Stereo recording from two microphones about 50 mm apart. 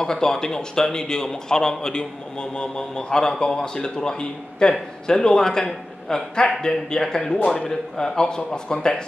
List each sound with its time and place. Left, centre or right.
0.0 s a man's voice: centre